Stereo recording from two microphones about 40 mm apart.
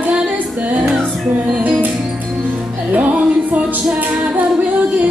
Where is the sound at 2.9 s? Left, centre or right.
Right.